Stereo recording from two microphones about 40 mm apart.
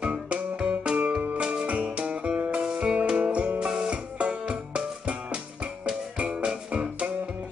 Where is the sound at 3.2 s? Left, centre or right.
Right.